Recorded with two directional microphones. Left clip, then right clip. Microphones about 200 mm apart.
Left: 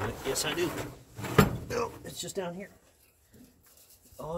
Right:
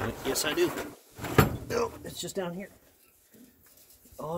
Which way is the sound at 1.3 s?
60° right (ahead or behind).